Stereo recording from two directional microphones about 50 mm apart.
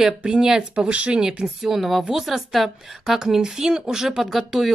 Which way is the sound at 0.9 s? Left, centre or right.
Right.